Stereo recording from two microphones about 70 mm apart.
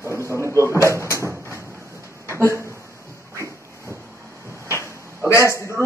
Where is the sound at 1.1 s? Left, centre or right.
Right.